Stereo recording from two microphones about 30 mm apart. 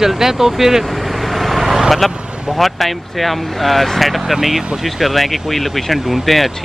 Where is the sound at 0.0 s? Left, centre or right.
Centre.